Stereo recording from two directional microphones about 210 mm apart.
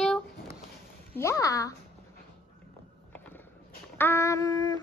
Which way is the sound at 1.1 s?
15° left (ahead or behind).